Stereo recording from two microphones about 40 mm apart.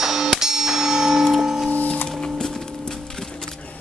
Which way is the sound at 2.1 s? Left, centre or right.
Left.